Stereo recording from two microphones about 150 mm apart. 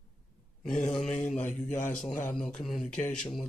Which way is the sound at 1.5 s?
55° left (ahead or behind).